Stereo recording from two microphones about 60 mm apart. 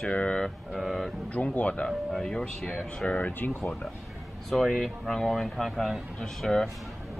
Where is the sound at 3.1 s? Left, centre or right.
Left.